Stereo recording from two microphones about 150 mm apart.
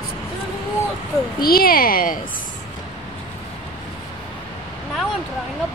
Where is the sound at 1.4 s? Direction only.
80° left.